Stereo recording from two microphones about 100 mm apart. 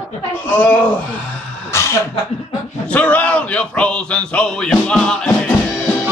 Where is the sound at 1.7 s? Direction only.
30° left (ahead or behind).